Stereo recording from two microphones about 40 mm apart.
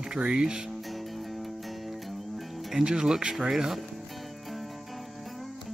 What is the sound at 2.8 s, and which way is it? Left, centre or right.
Speech, centre.